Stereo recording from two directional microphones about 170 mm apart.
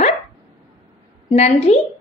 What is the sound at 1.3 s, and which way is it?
Speech, 40° left (ahead or behind).